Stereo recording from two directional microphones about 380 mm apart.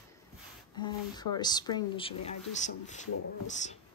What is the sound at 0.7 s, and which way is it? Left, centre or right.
Speech, centre.